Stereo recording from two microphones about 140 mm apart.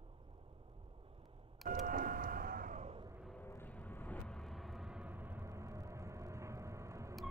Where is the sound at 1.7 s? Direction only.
90° right.